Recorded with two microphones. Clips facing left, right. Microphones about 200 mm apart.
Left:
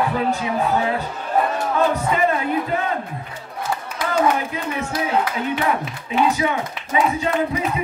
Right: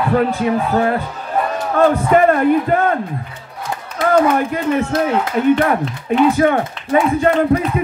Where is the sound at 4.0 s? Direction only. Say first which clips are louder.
Right 7 dB; 55° right (ahead or behind).